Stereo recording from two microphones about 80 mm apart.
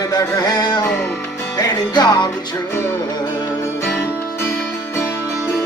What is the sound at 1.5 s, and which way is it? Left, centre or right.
Music, left.